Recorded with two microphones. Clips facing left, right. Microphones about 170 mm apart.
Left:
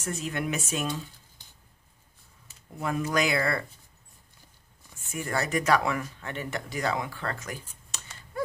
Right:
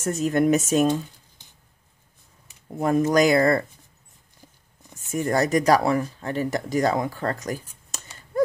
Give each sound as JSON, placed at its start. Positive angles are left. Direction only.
{"t": 0.0, "sound": "speech", "side_deg": -45}
{"t": 2.8, "sound": "speech", "side_deg": -40}
{"t": 4.9, "sound": "speech", "side_deg": -40}